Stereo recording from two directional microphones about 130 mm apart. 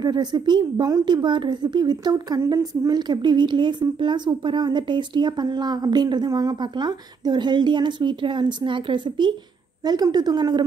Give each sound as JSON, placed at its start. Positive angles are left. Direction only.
{"t": 0.0, "sound": "a woman's voice", "side_deg": -30}